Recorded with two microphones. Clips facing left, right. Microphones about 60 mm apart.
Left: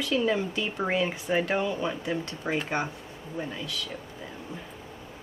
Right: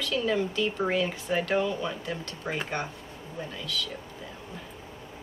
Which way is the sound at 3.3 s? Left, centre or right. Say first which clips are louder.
Left 3 dB; left.